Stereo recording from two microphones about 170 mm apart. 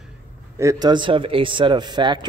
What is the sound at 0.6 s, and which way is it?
A man's voice, 20° right (ahead or behind).